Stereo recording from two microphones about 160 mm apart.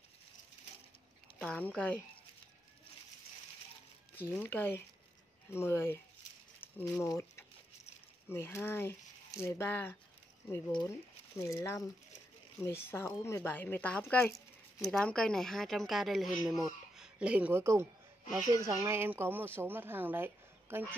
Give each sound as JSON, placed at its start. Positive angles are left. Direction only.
{"t": 1.4, "sound": "speech", "side_deg": 5}
{"t": 4.2, "sound": "speech", "side_deg": 10}
{"t": 7.0, "sound": "patter", "side_deg": 15}
{"t": 8.3, "sound": "speech", "side_deg": 15}
{"t": 11.3, "sound": "speech", "side_deg": 15}
{"t": 14.9, "sound": "speech", "side_deg": 5}